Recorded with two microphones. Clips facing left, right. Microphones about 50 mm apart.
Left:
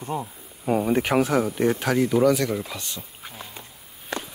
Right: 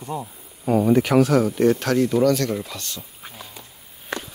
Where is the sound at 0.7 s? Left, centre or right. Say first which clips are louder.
Right 4 dB; left.